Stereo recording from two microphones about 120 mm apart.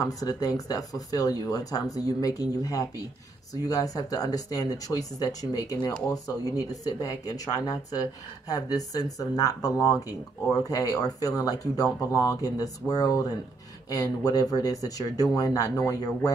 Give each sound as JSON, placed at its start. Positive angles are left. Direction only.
{"t": 0.0, "sound": "speech", "side_deg": 30}